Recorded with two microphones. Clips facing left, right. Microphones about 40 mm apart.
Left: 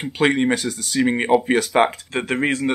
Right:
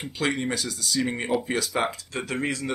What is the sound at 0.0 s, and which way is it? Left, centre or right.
Speech, left.